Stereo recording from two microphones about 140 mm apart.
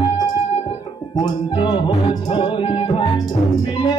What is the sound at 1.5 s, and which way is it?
Music, 35° left (ahead or behind).